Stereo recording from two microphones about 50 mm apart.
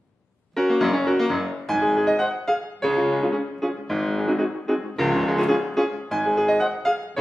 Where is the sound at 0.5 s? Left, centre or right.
Centre.